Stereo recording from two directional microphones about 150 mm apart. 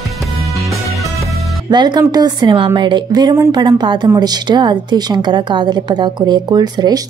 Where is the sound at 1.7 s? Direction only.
30° right (ahead or behind).